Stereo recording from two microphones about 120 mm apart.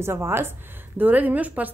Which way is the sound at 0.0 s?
20° right (ahead or behind).